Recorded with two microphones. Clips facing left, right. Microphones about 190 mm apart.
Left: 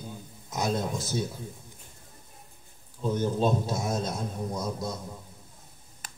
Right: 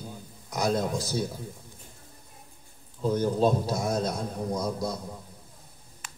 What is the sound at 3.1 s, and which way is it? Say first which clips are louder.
A man's voice: right 2 dB; 25° left (ahead or behind).